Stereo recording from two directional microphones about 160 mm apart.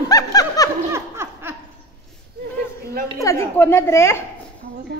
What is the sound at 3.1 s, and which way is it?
A woman's voice, 15° left (ahead or behind).